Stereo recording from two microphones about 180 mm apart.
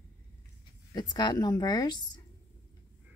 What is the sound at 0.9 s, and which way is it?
A woman's voice, 25° left (ahead or behind).